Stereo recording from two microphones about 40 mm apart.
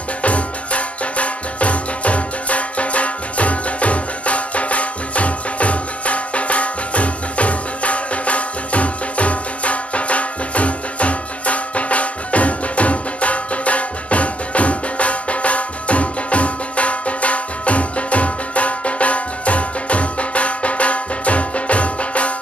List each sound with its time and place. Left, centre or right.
0.2 s music: left